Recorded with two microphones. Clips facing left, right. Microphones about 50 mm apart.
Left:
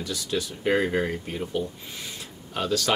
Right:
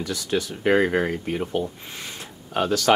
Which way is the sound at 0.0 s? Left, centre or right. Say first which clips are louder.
Right 4 dB; right.